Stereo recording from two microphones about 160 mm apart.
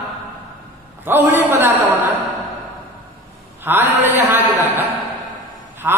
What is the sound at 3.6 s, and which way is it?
A man's voice, 15° right (ahead or behind).